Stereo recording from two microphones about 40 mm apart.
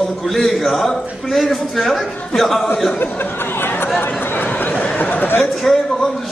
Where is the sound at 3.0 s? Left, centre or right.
Left.